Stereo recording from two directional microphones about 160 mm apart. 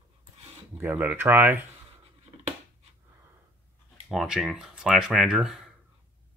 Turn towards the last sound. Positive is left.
turn(degrees=0)  # may be behind; listen again after turning